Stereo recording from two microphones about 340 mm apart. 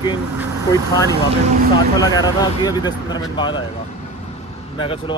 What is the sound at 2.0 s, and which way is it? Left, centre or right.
Speech, centre.